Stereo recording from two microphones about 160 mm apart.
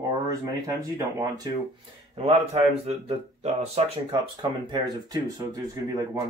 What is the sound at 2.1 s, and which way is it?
Speech, 40° right (ahead or behind).